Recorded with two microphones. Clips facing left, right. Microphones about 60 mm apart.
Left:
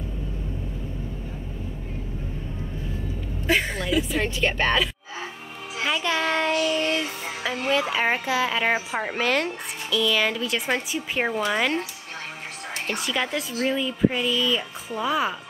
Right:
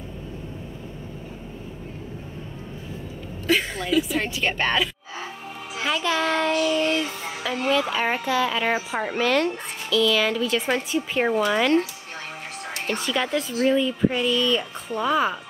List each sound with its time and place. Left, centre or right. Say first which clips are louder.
3.4 s a sound: even; left
4.2 s speech: left 1 dB; centre
6.9 s music: right 1 dB; left
7.7 s speech: left 1 dB; centre
9.8 s speech: right 2 dB; centre